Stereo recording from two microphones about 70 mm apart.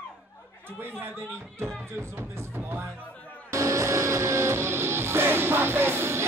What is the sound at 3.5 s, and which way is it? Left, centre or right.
Music, right.